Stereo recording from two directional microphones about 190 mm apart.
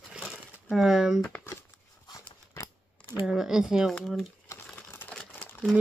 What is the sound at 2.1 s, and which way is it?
Crumpling, 15° left (ahead or behind).